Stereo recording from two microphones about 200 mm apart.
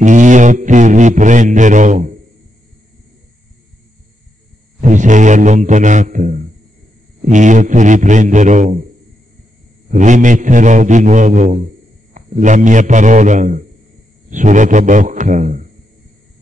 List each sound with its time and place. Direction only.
0.0 s a sound: 40° right (ahead or behind)
4.7 s a man's voice: 40° right (ahead or behind)
9.8 s a man's voice: 40° right (ahead or behind)